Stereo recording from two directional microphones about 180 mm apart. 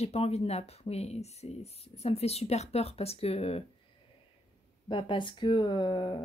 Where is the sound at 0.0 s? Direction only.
35° left (ahead or behind).